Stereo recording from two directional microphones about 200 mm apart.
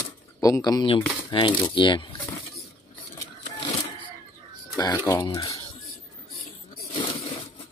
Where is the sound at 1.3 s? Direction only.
25° left (ahead or behind).